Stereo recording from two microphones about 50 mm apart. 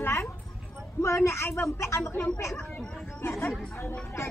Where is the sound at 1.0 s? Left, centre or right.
Left.